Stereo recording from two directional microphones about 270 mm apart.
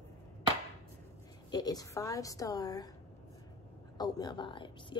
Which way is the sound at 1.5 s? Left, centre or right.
Centre.